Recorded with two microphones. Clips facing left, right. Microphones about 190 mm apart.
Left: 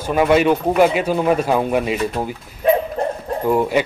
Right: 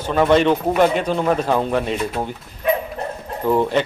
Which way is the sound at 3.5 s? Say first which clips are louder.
Even; 10° left (ahead or behind).